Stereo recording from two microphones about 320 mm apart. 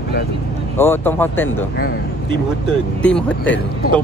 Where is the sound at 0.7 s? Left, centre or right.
Centre.